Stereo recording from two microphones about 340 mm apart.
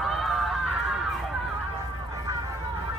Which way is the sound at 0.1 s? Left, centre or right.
Centre.